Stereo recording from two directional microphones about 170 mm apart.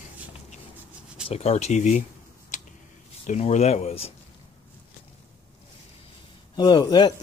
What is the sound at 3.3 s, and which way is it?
Speech, 40° left (ahead or behind).